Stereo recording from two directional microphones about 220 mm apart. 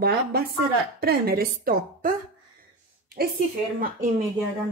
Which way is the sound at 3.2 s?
45° right (ahead or behind).